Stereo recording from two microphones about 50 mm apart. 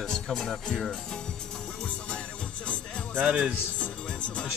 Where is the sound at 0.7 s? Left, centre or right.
Centre.